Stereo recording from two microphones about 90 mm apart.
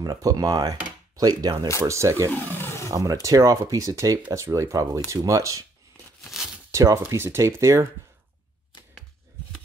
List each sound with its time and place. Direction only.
0.0 s speech: 45° right (ahead or behind)
1.9 s speech: 35° right (ahead or behind)
2.4 s a sound: 25° left (ahead or behind)
2.9 s speech: 35° right (ahead or behind)
6.2 s tearing: centre (ahead or behind)
6.7 s speech: 35° right (ahead or behind)